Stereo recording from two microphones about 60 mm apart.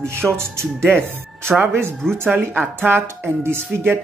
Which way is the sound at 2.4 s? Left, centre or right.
Right.